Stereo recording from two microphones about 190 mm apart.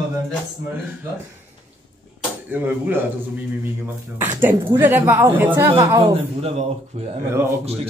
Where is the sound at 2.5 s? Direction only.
10° right (ahead or behind).